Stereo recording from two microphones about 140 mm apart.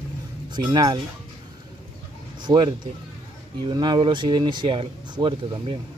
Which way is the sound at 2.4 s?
35° right (ahead or behind).